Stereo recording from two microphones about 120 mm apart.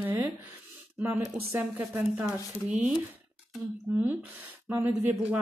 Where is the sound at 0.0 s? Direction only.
15° right (ahead or behind).